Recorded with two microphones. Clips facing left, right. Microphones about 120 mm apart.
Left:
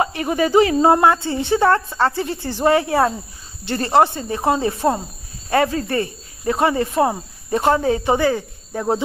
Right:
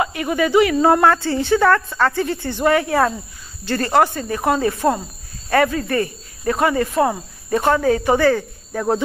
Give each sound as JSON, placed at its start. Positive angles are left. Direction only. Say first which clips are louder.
{"t": 0.0, "sound": "speech", "louder": "even", "side_deg": 35}